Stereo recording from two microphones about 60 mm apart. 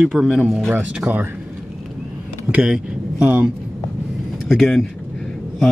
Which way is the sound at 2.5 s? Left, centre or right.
Centre.